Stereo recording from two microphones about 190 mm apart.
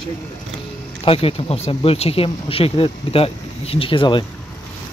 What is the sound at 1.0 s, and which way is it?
Speech, 30° left (ahead or behind).